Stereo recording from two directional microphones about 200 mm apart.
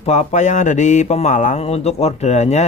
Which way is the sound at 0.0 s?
35° left (ahead or behind).